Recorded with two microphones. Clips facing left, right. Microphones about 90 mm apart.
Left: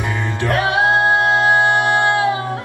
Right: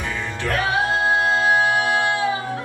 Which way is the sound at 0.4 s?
15° left (ahead or behind).